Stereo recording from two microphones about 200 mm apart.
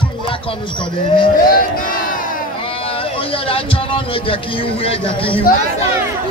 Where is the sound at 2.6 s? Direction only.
25° left (ahead or behind).